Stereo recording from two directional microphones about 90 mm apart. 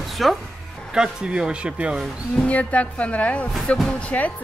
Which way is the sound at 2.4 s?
15° left (ahead or behind).